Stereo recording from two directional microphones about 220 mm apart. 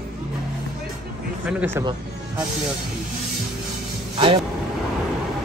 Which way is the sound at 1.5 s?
5° right (ahead or behind).